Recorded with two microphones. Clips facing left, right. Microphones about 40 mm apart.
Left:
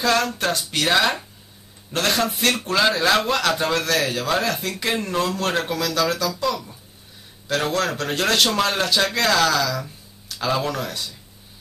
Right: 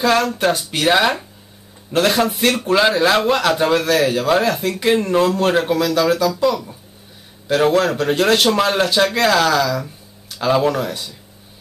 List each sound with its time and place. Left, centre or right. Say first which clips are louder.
0.0 s a man's voice: right 5 dB; centre